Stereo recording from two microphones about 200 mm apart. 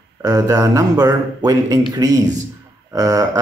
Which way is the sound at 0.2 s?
15° right (ahead or behind).